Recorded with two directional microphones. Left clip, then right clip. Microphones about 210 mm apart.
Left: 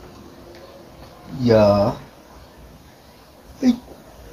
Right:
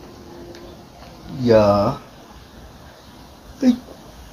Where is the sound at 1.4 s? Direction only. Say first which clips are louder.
Even; 10° left (ahead or behind).